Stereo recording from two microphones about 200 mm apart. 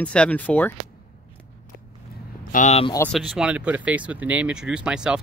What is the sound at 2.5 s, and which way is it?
Speech, 35° left (ahead or behind).